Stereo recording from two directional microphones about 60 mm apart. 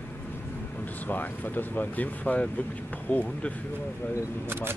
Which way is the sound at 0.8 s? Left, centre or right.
Left.